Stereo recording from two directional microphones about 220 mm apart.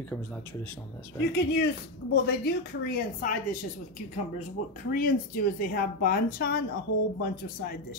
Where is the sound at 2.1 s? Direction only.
45° left (ahead or behind).